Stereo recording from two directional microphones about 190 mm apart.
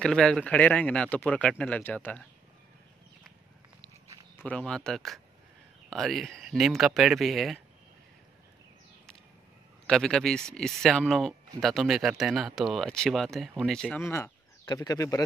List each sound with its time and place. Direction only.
0.0 s speech: 5° left (ahead or behind)
4.4 s speech: 5° left (ahead or behind)
9.8 s speech: 5° left (ahead or behind)